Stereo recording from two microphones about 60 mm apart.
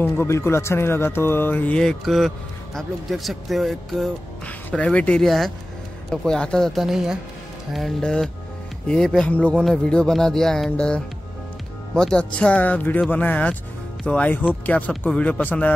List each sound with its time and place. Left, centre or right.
0.0 s speech: left
2.0 s a man's voice: centre
4.7 s music: centre
5.2 s a man's voice: centre
6.0 s music: centre
6.7 s speech: centre
8.0 s music: centre
9.3 s speech: centre
9.8 s music: centre
11.9 s speech: centre; by 15.7 s left